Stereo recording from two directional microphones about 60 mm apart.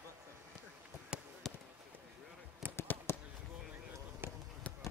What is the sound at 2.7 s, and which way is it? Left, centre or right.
Fireworks, left.